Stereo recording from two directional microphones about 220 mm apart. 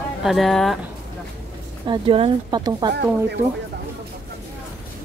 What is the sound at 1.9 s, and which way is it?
Speech, 25° right (ahead or behind).